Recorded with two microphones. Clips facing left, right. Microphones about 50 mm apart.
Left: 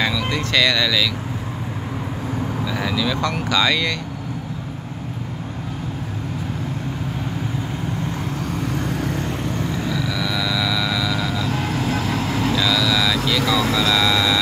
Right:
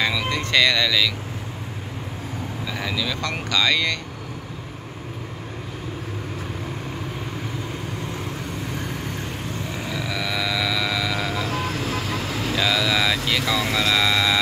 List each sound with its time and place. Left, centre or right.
0.0 s speech: centre
2.6 s speech: centre
9.8 s a sound: centre
12.5 s vehicle: centre